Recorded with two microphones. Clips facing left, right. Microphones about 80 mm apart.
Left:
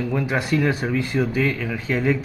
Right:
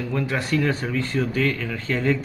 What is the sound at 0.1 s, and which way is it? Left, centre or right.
Speech, centre.